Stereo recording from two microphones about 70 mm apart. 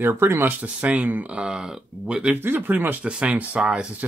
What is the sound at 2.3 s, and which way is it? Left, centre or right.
Speech, right.